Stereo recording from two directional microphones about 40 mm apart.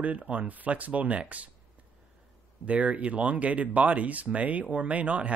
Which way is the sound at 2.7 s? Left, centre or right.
Right.